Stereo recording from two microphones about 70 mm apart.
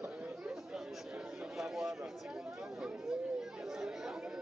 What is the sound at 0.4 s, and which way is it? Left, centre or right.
Chatter, centre.